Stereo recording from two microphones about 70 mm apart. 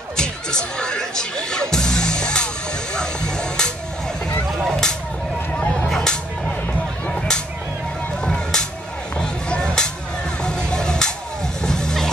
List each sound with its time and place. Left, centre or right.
0.2 s music: centre
4.6 s vehicle: centre
5.5 s a sound: centre
7.1 s whip: centre
8.3 s music: centre
11.6 s vehicle: centre